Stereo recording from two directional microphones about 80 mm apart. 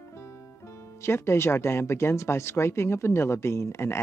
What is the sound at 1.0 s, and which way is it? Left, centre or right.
Speech, left.